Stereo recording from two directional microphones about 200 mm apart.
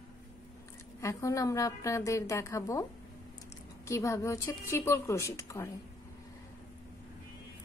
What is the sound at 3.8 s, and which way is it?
A woman's voice, 15° left (ahead or behind).